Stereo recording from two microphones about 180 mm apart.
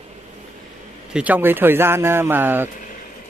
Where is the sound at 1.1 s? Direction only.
10° right (ahead or behind).